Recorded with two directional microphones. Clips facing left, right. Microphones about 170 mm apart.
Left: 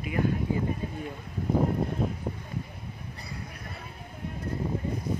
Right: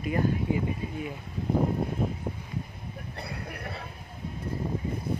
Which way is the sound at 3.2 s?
65° right (ahead or behind).